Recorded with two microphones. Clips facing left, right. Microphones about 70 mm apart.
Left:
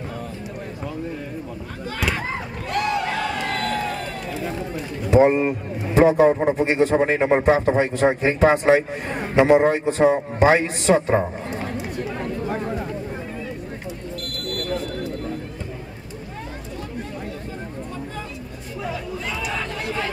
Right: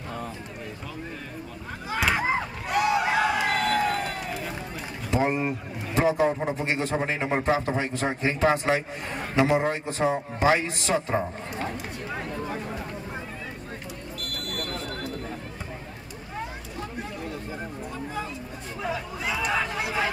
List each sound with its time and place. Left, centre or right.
1.9 s a sound: centre
2.1 s crowd: centre
5.1 s a man's voice: left
11.1 s speech: left
18.8 s chatter: centre